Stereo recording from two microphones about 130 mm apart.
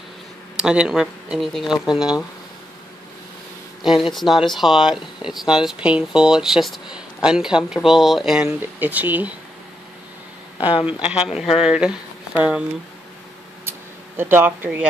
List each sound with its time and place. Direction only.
0.6 s speech: 5° right (ahead or behind)
3.8 s speech: centre (ahead or behind)
10.9 s speech: 10° right (ahead or behind)
13.7 s a sound: 15° right (ahead or behind)